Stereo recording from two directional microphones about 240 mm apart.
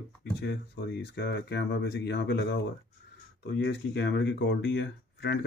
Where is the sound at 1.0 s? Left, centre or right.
Left.